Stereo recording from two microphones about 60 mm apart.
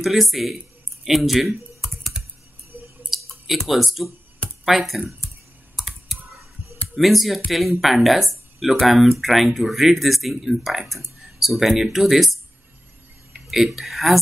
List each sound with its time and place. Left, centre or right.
0.0 s speech: centre
1.8 s computer keyboard: centre
2.7 s clicking: right
3.1 s clicking: centre
3.4 s speech: centre
5.8 s computer keyboard: centre
7.0 s speech: centre
13.7 s speech: centre